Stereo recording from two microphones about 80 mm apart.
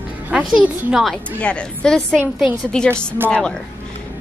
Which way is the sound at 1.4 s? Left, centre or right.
Centre.